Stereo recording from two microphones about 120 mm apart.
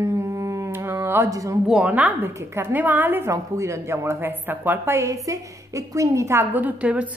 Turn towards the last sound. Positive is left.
turn(degrees=-10)  # may be behind; listen again after turning